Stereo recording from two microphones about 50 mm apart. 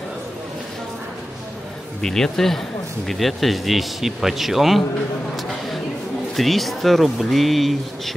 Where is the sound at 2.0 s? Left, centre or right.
Centre.